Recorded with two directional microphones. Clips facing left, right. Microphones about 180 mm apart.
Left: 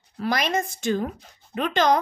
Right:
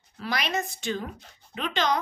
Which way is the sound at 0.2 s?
45° left (ahead or behind).